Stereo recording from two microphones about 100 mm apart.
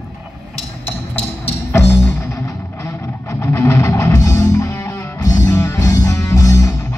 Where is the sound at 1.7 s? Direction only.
25° left (ahead or behind).